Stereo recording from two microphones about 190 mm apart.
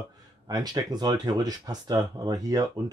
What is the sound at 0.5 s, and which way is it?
Speech, 20° right (ahead or behind).